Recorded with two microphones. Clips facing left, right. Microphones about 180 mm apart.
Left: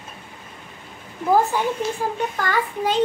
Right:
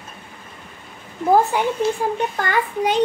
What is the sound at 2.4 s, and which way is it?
Speech, 15° right (ahead or behind).